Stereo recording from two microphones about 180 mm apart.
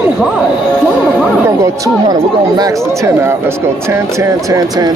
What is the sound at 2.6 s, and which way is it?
Speech, 15° right (ahead or behind).